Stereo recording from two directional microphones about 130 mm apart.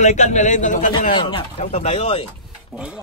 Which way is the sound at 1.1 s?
40° left (ahead or behind).